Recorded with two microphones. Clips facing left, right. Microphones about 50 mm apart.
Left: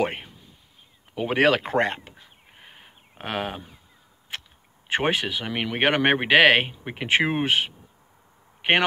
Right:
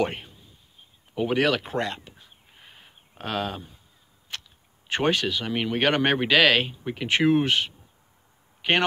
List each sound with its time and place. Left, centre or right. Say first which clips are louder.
0.0 s speech: left 1 dB; left
2.6 s a sound: left 2 dB; left
4.8 s speech: even; left
5.5 s speech: right 2 dB; left
5.8 s speech: left 2 dB; left
6.7 s speech: left 2 dB; left